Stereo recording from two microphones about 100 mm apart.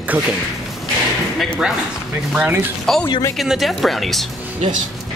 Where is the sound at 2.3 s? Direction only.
15° right (ahead or behind).